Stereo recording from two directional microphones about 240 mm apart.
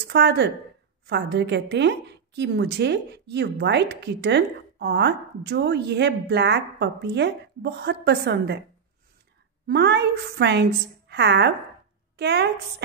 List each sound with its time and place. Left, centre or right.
0.0 s a woman's voice: right
9.7 s a woman's voice: right